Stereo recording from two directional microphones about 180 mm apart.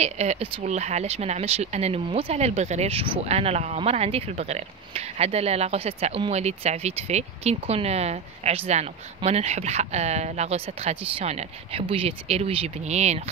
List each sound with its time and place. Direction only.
0.0 s speech: 35° right (ahead or behind)